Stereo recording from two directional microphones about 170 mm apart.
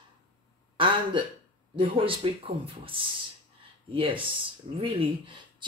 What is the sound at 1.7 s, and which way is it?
A woman's voice, 30° right (ahead or behind).